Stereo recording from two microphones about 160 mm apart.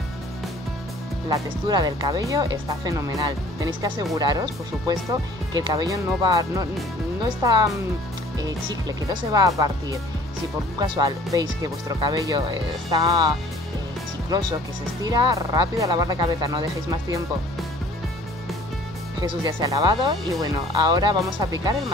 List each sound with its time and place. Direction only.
1.3 s speech: 25° right (ahead or behind)
15.0 s speech: 25° right (ahead or behind)
19.4 s speech: 25° right (ahead or behind)